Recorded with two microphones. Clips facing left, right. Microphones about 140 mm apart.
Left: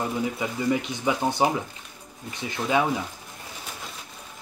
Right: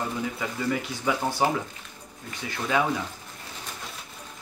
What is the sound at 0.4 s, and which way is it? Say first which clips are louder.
Speech: left 3 dB; 20° left (ahead or behind).